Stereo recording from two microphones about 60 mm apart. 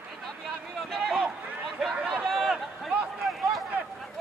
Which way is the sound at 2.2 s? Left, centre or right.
Centre.